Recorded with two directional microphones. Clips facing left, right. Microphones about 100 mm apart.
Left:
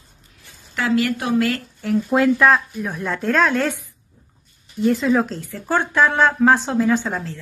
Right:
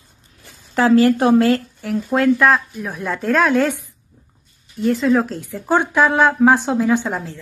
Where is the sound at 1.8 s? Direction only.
Centre (ahead or behind).